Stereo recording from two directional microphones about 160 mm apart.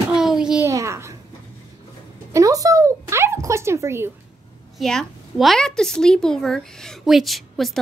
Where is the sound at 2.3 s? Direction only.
20° right (ahead or behind).